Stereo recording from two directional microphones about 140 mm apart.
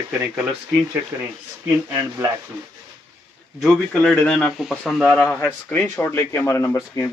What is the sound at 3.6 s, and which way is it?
Speech, 5° left (ahead or behind).